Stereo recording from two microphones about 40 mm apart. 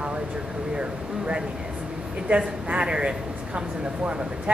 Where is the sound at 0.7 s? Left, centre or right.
Right.